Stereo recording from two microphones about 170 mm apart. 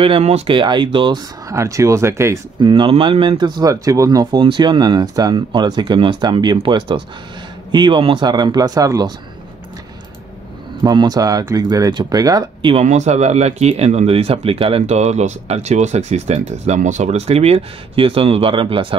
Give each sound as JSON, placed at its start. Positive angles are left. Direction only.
{"t": 0.0, "sound": "speech", "side_deg": -35}
{"t": 1.5, "sound": "speech", "side_deg": -15}
{"t": 2.6, "sound": "speech", "side_deg": -30}
{"t": 10.8, "sound": "speech", "side_deg": -25}
{"t": 12.7, "sound": "speech", "side_deg": -45}